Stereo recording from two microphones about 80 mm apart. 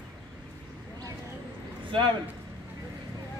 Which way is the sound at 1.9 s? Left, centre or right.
Right.